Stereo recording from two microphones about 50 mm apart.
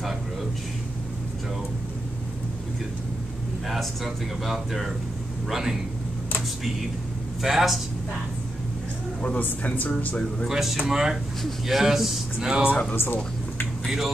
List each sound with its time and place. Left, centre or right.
3.6 s speech: centre
7.4 s speech: centre
9.7 s speech: left
10.5 s speech: centre
12.9 s speech: left
13.8 s speech: centre